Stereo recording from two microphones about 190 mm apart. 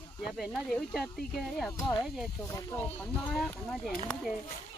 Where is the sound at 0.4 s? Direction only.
Centre (ahead or behind).